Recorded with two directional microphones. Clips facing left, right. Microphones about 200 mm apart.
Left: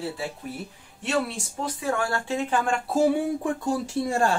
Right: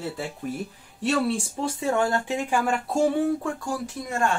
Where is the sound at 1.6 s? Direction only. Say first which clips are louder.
Right 3 dB; 25° right (ahead or behind).